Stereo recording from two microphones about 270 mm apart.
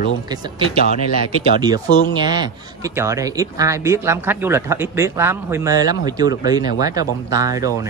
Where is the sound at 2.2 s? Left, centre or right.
Centre.